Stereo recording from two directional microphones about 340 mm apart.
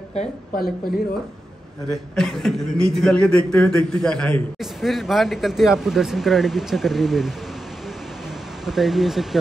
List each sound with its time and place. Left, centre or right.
0.1 s speech: left
1.9 s a man's voice: centre
8.6 s a man's voice: centre